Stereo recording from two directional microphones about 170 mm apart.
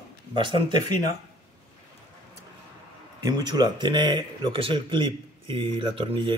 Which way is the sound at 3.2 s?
25° right (ahead or behind).